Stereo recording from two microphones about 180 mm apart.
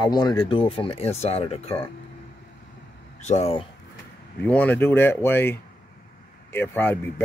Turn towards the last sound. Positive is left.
turn(degrees=10)  # may be behind; listen again after turning